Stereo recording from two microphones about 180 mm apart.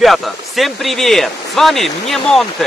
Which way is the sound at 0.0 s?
Centre (ahead or behind).